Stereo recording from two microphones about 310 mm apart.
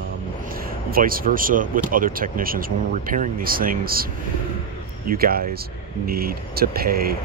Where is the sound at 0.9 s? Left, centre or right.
Right.